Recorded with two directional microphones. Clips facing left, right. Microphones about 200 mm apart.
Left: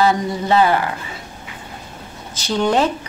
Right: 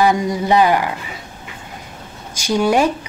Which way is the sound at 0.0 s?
15° right (ahead or behind).